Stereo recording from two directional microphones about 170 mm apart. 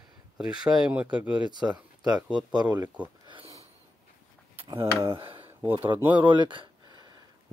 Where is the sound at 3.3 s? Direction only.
30° right (ahead or behind).